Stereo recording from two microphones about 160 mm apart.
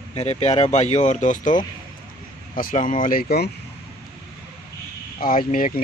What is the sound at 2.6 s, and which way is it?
Speech, 55° left (ahead or behind).